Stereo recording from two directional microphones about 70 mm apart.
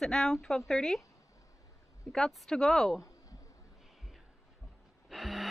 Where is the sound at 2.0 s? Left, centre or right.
Centre.